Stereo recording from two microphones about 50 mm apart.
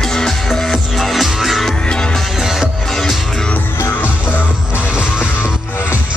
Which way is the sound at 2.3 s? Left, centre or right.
Centre.